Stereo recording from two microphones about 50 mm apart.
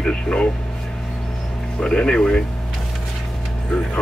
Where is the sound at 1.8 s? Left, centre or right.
Centre.